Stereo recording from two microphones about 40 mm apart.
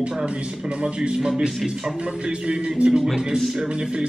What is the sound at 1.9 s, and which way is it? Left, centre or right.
Speech, right.